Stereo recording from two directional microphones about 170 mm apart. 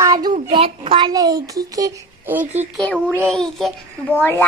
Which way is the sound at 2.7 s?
5° left (ahead or behind).